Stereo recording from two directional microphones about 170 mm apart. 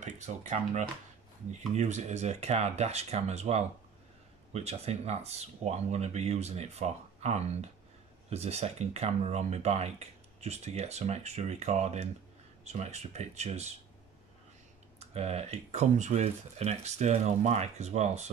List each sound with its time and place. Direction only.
0.0 s speech: 45° right (ahead or behind)
15.0 s speech: 40° right (ahead or behind)